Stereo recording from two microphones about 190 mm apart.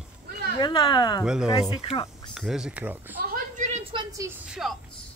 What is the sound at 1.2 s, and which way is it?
Speech, 5° right (ahead or behind).